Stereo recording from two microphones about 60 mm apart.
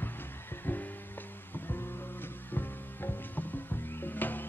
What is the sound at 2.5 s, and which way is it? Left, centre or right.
Music, left.